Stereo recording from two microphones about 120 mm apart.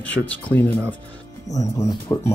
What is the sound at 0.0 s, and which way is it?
Speech, 15° left (ahead or behind).